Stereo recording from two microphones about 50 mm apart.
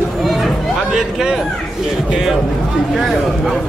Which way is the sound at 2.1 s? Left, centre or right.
Centre.